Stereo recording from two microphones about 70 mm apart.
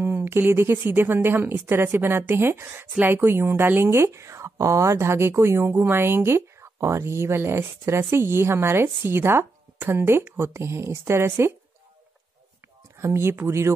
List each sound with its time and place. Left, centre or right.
0.0 s speech: right
13.0 s speech: right